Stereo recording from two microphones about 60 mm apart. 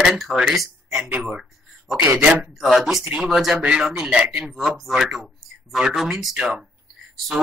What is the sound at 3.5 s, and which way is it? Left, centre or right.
Speech, centre.